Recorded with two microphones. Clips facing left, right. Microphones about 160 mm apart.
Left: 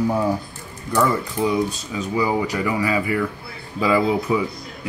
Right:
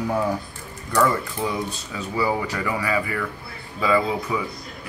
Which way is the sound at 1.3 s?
15° left (ahead or behind).